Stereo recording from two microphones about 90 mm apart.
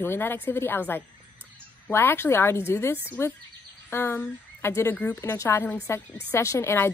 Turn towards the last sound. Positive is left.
turn(degrees=25)  # may be behind; listen again after turning